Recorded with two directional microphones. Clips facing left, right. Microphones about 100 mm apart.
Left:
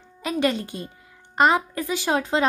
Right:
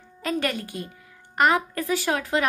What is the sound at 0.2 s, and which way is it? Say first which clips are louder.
A child's voice: left 3 dB; 20° left (ahead or behind).